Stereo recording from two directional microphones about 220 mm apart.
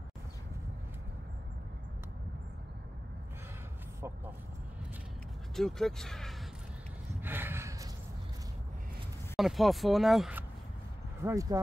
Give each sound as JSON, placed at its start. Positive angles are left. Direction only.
{"t": 5.6, "sound": "speech", "side_deg": 0}
{"t": 7.2, "sound": "a sound", "side_deg": -10}
{"t": 9.4, "sound": "speech", "side_deg": 0}
{"t": 11.2, "sound": "speech", "side_deg": -15}